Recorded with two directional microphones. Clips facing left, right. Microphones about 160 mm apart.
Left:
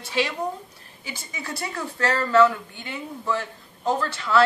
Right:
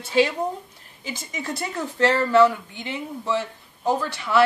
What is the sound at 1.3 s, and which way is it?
A woman's voice, 20° right (ahead or behind).